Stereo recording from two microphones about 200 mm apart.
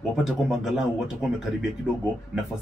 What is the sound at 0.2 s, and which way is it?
Speech, centre (ahead or behind).